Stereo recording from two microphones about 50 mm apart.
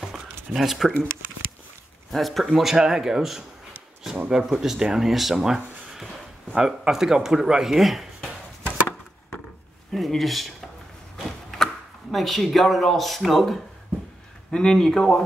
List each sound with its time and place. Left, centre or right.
0.5 s speech: centre
2.0 s speech: centre
8.6 s a sound: left
9.9 s speech: centre
14.5 s speech: centre